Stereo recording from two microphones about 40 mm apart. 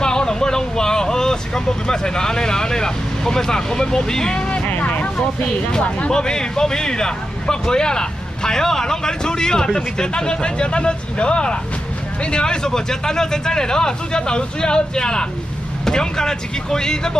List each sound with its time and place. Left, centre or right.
0.0 s speech: centre
4.5 s vehicle: left
5.4 s speech: left